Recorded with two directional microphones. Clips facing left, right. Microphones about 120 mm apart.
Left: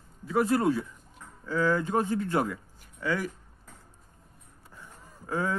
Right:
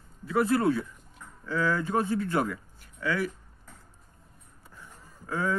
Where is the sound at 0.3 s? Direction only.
15° left (ahead or behind).